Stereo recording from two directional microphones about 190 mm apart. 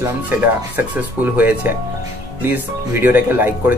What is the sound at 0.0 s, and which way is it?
Speech, 10° right (ahead or behind).